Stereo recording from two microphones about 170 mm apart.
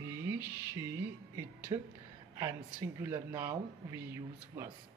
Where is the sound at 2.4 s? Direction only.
15° right (ahead or behind).